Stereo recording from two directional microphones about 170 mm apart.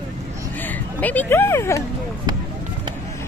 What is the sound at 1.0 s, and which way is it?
Speech, 10° left (ahead or behind).